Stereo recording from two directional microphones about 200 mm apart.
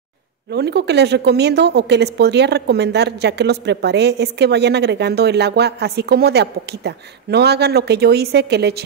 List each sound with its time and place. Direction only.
0.5 s a woman's voice: 55° right (ahead or behind)